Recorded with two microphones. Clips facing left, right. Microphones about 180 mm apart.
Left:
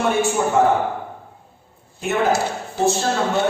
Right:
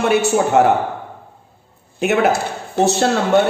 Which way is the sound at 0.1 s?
75° right (ahead or behind).